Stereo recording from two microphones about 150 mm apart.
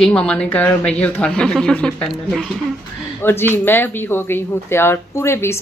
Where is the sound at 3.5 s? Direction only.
15° left (ahead or behind).